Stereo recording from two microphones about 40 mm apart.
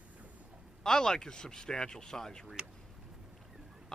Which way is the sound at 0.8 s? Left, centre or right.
Centre.